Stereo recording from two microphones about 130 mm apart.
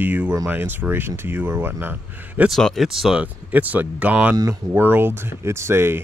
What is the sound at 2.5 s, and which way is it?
Speech, centre (ahead or behind).